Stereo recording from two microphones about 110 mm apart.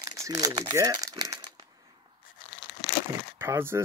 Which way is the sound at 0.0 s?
30° right (ahead or behind).